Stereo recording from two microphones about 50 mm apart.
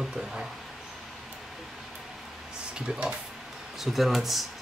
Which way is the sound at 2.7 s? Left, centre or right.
Right.